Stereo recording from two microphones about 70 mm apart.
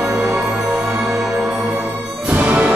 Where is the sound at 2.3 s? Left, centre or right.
Right.